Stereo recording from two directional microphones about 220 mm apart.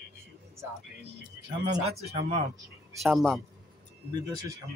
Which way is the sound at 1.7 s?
30° right (ahead or behind).